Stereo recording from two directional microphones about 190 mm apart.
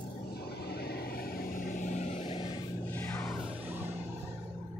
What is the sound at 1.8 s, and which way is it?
Vehicle, 35° left (ahead or behind).